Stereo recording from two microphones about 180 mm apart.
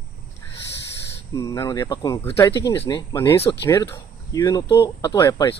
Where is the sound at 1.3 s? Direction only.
20° left (ahead or behind).